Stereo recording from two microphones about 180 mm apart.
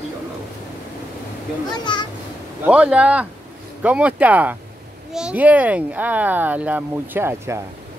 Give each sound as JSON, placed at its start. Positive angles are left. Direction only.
{"t": 1.9, "sound": "a child's voice", "side_deg": 25}
{"t": 2.6, "sound": "speech", "side_deg": -5}